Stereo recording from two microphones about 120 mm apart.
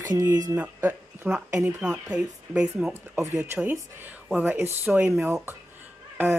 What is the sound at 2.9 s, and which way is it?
Speech, 20° right (ahead or behind).